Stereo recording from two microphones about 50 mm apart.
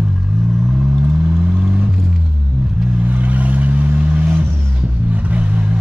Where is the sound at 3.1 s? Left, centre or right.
Right.